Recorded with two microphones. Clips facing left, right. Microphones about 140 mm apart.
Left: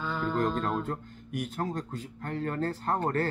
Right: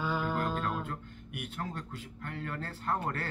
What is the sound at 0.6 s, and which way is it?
Speech, 40° left (ahead or behind).